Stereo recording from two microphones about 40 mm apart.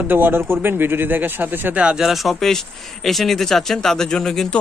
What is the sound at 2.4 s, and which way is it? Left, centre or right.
Speech, centre.